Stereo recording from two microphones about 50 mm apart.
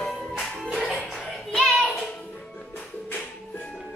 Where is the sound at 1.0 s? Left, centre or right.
Centre.